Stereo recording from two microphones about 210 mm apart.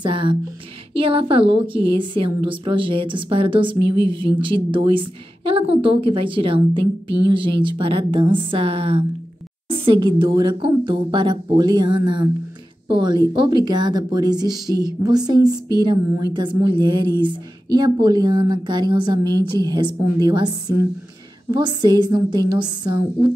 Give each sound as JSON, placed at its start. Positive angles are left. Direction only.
{"t": 0.0, "sound": "a woman's voice", "side_deg": -25}